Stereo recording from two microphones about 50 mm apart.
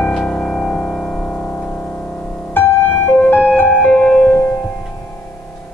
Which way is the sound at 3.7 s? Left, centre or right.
Centre.